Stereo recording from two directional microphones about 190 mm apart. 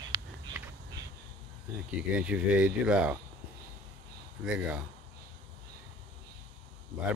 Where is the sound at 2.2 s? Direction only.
5° right (ahead or behind).